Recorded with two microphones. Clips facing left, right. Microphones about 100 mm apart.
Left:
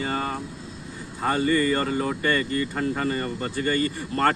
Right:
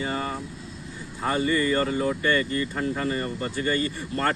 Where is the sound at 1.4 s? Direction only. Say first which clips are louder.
Left 1 dB; 35° left (ahead or behind).